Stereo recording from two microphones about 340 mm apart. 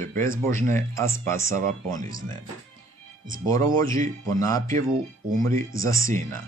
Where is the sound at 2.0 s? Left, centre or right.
Right.